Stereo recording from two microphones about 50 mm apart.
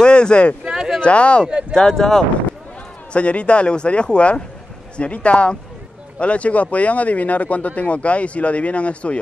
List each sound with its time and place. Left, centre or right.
0.0 s speech: centre
0.7 s a sound: centre
1.0 s speech: left
1.7 s speech: centre
3.1 s speech: left